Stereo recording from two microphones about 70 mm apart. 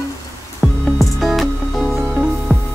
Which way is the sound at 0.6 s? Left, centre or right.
Centre.